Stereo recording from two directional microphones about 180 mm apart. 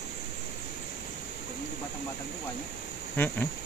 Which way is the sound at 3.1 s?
10° left (ahead or behind).